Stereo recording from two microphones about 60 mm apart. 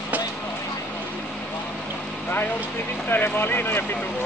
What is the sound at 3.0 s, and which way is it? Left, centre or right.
Speech, left.